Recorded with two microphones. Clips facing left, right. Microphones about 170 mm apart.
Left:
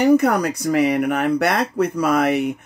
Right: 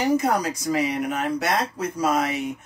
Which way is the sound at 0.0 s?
60° left (ahead or behind).